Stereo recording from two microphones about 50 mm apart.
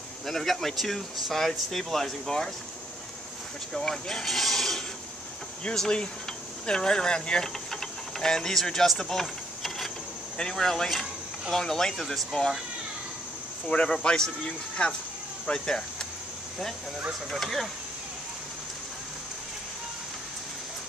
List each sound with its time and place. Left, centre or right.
0.3 s speech: centre
3.7 s speech: centre
5.8 s speech: centre
13.8 s speech: centre
17.3 s speech: centre